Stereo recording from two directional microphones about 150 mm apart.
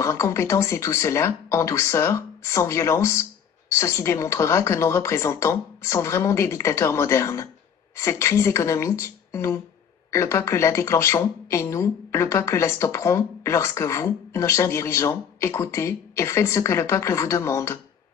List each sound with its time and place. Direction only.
0.0 s speech: 20° left (ahead or behind)